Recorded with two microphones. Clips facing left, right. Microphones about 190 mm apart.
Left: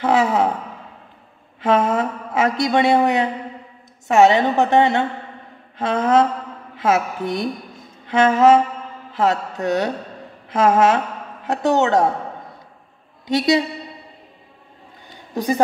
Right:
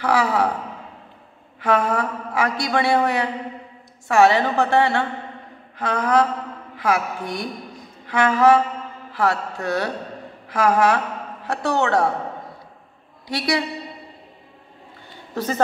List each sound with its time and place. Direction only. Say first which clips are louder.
0.0 s a man's voice: left 3 dB; 20° left (ahead or behind)
1.6 s a man's voice: left 3 dB; 25° left (ahead or behind)
13.3 s a man's voice: left 6 dB; 20° left (ahead or behind)
15.3 s a man's voice: left 4 dB; 15° left (ahead or behind)